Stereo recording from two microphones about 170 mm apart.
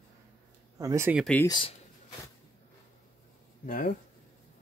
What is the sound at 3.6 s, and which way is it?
Speech, 55° left (ahead or behind).